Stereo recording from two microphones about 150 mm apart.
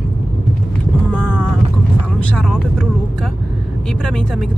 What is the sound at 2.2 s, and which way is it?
Speech, 5° left (ahead or behind).